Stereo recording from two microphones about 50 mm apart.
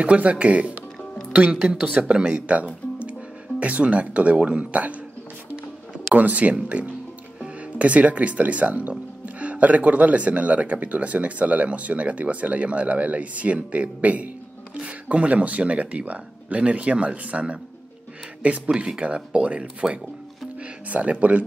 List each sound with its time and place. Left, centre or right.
0.0 s speech: right
6.1 s speech: right